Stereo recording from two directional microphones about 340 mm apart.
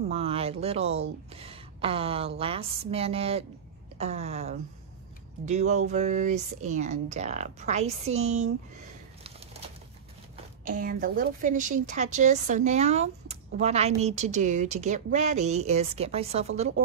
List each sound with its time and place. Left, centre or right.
0.1 s a woman's voice: centre
10.6 s a woman's voice: right